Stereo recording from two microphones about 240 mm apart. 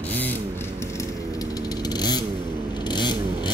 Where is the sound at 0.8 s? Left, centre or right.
Centre.